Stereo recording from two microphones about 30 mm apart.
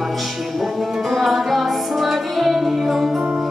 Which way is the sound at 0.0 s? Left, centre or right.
Centre.